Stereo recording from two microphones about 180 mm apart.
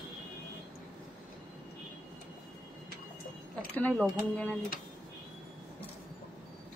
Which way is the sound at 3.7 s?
10° left (ahead or behind).